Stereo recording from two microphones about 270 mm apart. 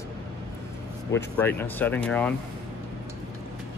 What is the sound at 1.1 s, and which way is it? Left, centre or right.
Speech, centre.